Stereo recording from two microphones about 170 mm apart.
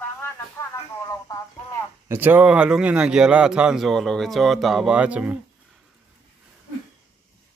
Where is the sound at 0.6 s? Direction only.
15° left (ahead or behind).